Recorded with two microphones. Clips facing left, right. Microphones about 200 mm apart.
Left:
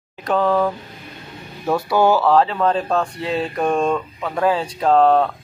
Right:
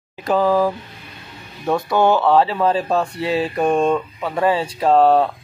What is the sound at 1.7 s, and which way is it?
Speech, 5° left (ahead or behind).